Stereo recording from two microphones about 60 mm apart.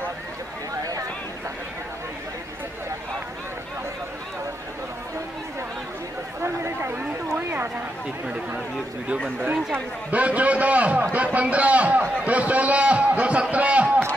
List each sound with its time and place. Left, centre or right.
6.4 s chatter: right
7.4 s a sound: right
10.1 s a man's voice: right